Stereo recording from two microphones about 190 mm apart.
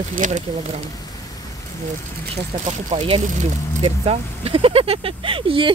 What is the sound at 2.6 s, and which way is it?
Speech, 30° right (ahead or behind).